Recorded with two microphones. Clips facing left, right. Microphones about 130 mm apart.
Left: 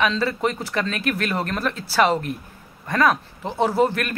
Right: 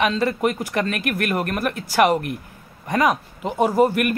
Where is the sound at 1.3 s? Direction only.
15° right (ahead or behind).